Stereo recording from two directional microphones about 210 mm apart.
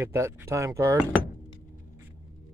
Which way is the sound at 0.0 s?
10° right (ahead or behind).